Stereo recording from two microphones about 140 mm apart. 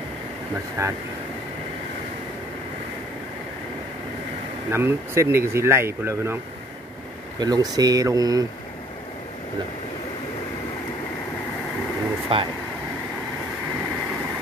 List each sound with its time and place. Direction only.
0.8 s speech: 20° right (ahead or behind)
4.6 s speech: 20° right (ahead or behind)
12.3 s speech: 40° right (ahead or behind)